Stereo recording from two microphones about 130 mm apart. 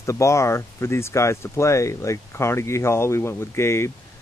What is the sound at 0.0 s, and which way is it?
Speech, 25° left (ahead or behind).